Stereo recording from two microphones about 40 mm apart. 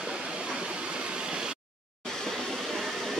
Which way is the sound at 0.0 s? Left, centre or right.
Centre.